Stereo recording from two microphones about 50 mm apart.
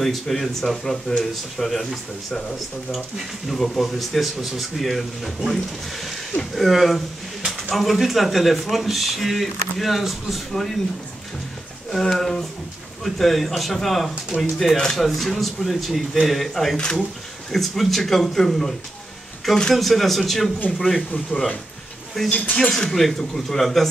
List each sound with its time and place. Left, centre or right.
0.0 s speech: centre
11.9 s speech: centre
16.7 s speech: centre
17.5 s speech: centre
21.3 s speech: left
22.2 s speech: centre